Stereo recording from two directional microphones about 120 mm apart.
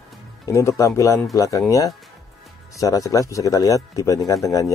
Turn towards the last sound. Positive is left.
turn(degrees=30)  # may be behind; listen again after turning